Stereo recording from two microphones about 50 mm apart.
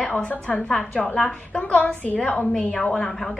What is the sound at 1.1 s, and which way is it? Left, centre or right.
A woman's voice, centre.